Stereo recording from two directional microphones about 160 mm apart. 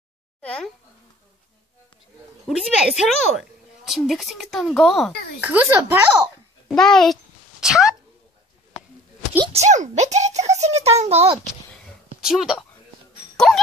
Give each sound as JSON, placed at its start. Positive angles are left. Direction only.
{"t": 0.4, "sound": "speech", "side_deg": 10}
{"t": 2.4, "sound": "a woman's voice", "side_deg": 0}
{"t": 5.4, "sound": "speech", "side_deg": -10}
{"t": 6.7, "sound": "a woman's voice", "side_deg": 5}
{"t": 9.4, "sound": "a child's voice", "side_deg": -40}
{"t": 12.2, "sound": "speech", "side_deg": -5}